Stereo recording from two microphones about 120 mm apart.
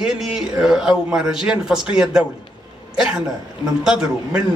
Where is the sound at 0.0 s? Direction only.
5° right (ahead or behind).